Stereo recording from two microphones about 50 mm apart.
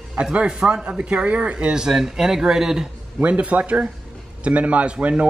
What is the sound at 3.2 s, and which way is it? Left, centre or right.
A man's voice, right.